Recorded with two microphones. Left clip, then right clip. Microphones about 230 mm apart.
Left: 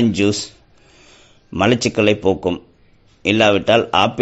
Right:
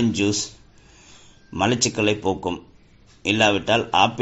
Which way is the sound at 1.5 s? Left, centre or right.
Left.